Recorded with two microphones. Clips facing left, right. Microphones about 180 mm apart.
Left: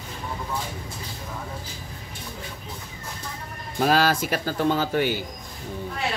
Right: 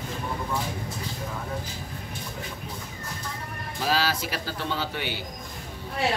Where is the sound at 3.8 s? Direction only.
50° left (ahead or behind).